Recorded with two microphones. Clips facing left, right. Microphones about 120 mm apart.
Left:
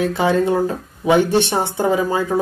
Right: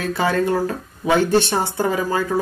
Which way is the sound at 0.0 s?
20° left (ahead or behind).